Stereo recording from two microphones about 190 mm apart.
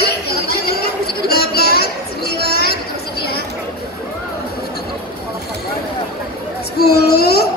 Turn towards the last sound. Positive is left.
turn(degrees=55)  # may be behind; listen again after turning